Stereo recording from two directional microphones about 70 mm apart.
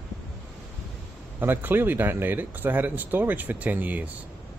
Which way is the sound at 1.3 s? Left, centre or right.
Right.